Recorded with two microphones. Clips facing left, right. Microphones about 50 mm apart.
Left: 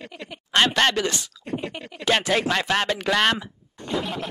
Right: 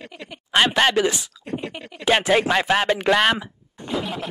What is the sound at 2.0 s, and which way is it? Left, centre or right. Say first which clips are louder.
Speech: right 3 dB; centre.